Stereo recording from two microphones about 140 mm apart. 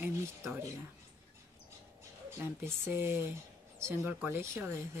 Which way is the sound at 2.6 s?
15° right (ahead or behind).